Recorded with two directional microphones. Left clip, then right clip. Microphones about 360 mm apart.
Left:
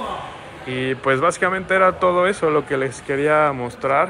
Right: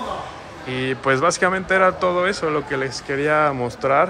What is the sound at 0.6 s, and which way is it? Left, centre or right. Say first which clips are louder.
Speech: left 1 dB; right.